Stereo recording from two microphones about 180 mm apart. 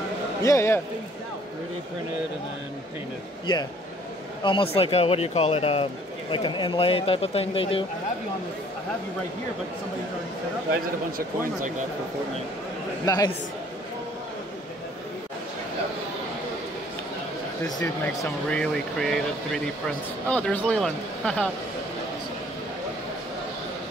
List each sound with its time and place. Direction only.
0.4 s speech: 15° left (ahead or behind)
4.4 s speech: 30° left (ahead or behind)
11.1 s speech: 55° right (ahead or behind)
13.0 s speech: 20° left (ahead or behind)
18.0 s speech: 10° left (ahead or behind)